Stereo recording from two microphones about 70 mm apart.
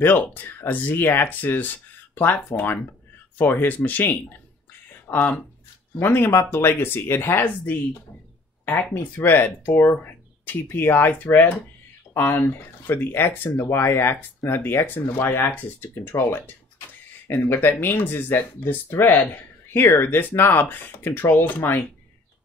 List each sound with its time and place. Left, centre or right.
0.0 s speech: left
8.9 s speech: left
13.5 s speech: left